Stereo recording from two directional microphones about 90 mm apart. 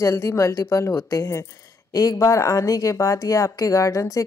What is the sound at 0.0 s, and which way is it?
A woman's voice, 35° left (ahead or behind).